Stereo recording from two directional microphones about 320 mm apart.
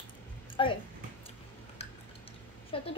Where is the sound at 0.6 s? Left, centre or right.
Centre.